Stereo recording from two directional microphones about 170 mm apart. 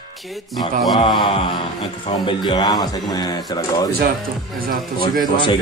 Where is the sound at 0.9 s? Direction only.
25° left (ahead or behind).